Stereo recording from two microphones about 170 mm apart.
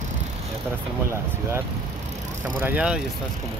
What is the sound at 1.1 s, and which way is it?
Speech, 15° right (ahead or behind).